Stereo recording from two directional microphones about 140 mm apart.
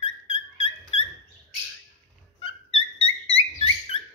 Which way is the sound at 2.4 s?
40° left (ahead or behind).